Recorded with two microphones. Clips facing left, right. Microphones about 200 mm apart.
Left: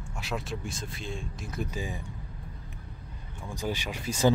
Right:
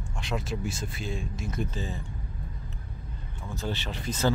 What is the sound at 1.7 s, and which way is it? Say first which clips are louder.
Speech: even; 15° left (ahead or behind).